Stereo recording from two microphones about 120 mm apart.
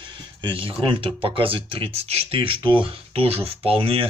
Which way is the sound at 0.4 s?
45° right (ahead or behind).